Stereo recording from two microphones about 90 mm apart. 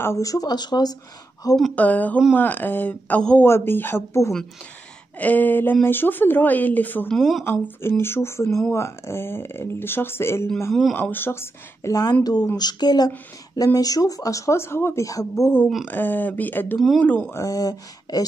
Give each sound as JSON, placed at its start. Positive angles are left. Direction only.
{"t": 0.0, "sound": "speech", "side_deg": 35}
{"t": 1.8, "sound": "speech", "side_deg": 15}
{"t": 3.4, "sound": "speech", "side_deg": 25}
{"t": 7.1, "sound": "speech", "side_deg": 0}
{"t": 7.4, "sound": "speech", "side_deg": 25}
{"t": 8.5, "sound": "speech", "side_deg": 5}
{"t": 8.7, "sound": "speech", "side_deg": 30}
{"t": 10.7, "sound": "speech", "side_deg": 0}
{"t": 11.0, "sound": "speech", "side_deg": 25}
{"t": 11.9, "sound": "speech", "side_deg": 45}
{"t": 15.9, "sound": "speech", "side_deg": 20}
{"t": 16.7, "sound": "speech", "side_deg": 0}
{"t": 17.3, "sound": "speech", "side_deg": 40}